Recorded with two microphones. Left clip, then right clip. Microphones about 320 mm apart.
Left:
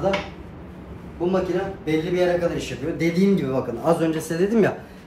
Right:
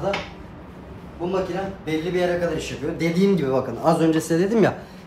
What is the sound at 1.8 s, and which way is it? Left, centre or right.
A man's voice, centre.